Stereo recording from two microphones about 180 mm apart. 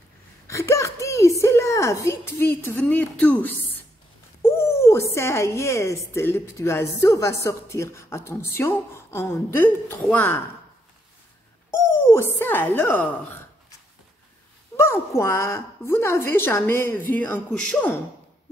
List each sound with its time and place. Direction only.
0.5 s a sound: 15° left (ahead or behind)
2.7 s speech: 10° left (ahead or behind)
11.7 s a woman's voice: 15° left (ahead or behind)
14.8 s speech: 15° left (ahead or behind)